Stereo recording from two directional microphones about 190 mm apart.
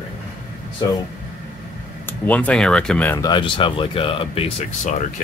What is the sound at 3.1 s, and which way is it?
Speech, 20° left (ahead or behind).